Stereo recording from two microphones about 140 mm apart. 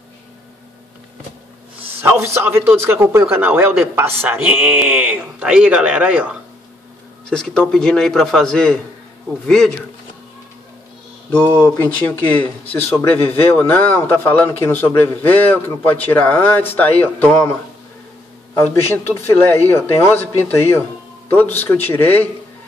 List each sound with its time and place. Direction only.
2.0 s a man's voice: 15° right (ahead or behind)
7.2 s a man's voice: 5° left (ahead or behind)
11.3 s speech: 10° left (ahead or behind)
18.5 s speech: 15° left (ahead or behind)